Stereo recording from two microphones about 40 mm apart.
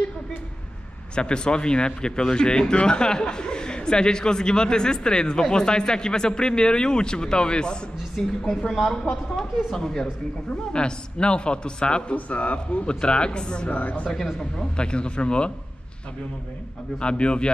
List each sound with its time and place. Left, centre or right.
1.1 s speech: left
8.5 s a woman's voice: centre
10.7 s speech: left
12.3 s speech: left
12.8 s speech: left
13.7 s speech: left
14.0 s a woman's voice: centre
17.0 s speech: left